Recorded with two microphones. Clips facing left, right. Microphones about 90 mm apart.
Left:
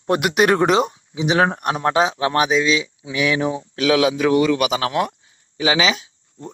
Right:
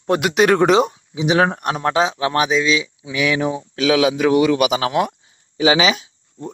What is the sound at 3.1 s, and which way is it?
A man's voice, 35° left (ahead or behind).